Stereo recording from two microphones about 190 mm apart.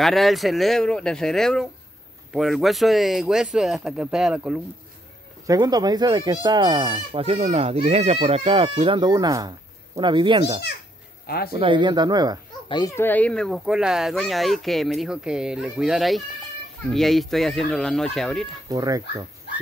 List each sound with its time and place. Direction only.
0.0 s speech: centre (ahead or behind)
5.5 s speech: 20° right (ahead or behind)
11.2 s speech: 55° left (ahead or behind)
11.5 s speech: 25° right (ahead or behind)
12.6 s a child's voice: 25° left (ahead or behind)
12.9 s speech: 10° left (ahead or behind)
18.7 s speech: 20° right (ahead or behind)